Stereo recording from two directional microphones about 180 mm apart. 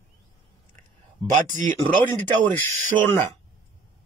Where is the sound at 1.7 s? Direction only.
10° left (ahead or behind).